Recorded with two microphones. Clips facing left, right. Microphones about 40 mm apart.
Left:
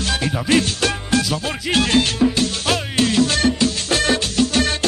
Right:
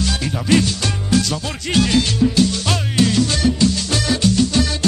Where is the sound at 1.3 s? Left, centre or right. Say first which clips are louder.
Even; left.